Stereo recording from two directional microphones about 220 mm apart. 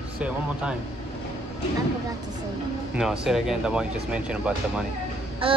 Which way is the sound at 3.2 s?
Centre (ahead or behind).